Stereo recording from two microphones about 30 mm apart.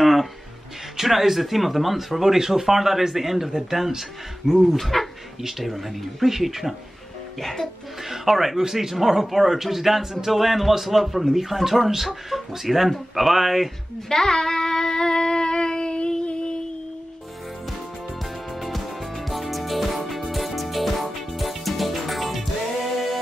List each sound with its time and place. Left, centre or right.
0.0 s music: centre
0.9 s speech: centre
2.3 s speech: centre
4.7 s speech: centre
8.1 s speech: centre
11.9 s speech: centre
12.3 s speech: centre
14.0 s a sound: centre; by 16.5 s left
18.6 s music: centre